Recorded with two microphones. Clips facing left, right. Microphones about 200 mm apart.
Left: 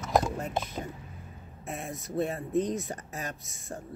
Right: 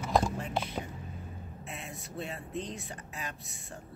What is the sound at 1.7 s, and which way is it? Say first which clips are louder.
Speech: left 8 dB; 50° left (ahead or behind).